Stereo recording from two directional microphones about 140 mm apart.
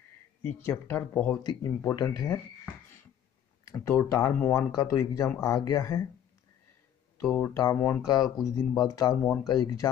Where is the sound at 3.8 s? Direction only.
20° left (ahead or behind).